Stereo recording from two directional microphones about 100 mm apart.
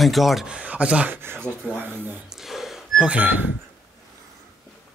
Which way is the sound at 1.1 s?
25° right (ahead or behind).